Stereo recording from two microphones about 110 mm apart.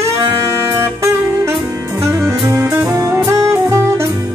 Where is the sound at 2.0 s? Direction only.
20° right (ahead or behind).